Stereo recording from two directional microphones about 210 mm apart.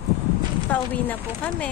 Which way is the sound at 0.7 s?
5° left (ahead or behind).